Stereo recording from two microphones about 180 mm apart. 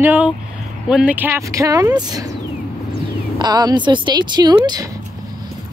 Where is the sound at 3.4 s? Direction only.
25° right (ahead or behind).